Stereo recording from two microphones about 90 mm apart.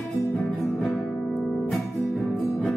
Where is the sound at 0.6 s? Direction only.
Centre (ahead or behind).